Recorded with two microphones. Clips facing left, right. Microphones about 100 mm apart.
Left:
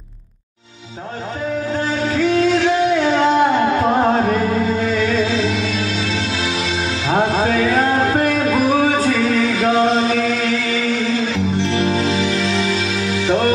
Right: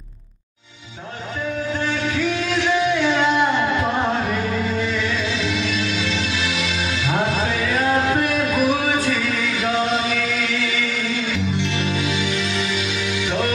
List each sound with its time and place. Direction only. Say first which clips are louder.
2.0 s music: left 7 dB; 35° left (ahead or behind)